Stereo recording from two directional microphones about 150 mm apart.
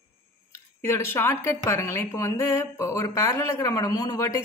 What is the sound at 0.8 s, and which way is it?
A woman's voice, 15° left (ahead or behind).